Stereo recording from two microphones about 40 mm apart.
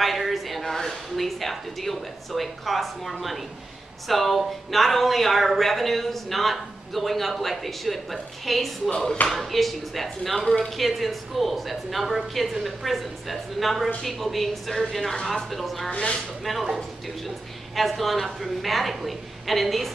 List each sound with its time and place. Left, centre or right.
0.0 s a woman's voice: centre
15.9 s speech: left
16.4 s a woman's voice: centre